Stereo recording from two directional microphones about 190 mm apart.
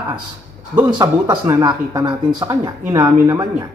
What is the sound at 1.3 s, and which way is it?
A man's voice, 20° right (ahead or behind).